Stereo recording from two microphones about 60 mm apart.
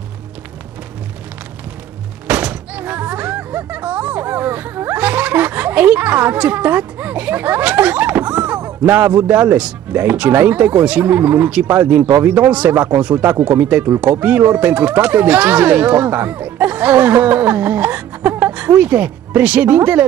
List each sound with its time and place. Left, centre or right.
2.2 s music: right
3.7 s speech: right
4.9 s snicker: right
6.3 s a sound: right
8.8 s speech: right
13.1 s speech: right
13.4 s speech: right